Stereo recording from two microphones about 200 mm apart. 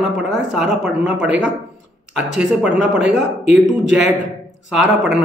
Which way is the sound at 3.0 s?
60° right (ahead or behind).